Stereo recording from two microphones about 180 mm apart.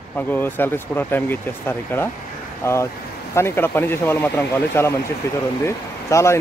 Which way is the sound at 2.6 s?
15° left (ahead or behind).